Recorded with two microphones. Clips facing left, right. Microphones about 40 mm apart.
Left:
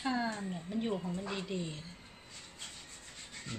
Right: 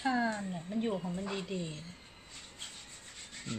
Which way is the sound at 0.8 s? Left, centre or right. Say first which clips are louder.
Right 1 dB; centre.